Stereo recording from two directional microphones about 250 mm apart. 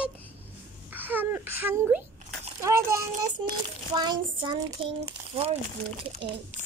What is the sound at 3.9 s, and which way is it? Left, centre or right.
A child's voice, centre.